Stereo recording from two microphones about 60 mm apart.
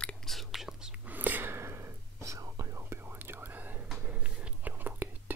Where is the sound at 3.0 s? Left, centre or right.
Right.